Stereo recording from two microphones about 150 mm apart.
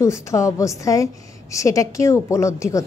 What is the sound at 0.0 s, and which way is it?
A woman's voice, 20° left (ahead or behind).